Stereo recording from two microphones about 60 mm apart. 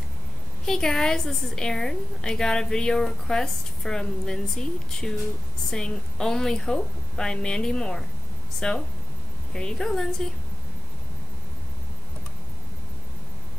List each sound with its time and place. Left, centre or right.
0.7 s a woman's voice: centre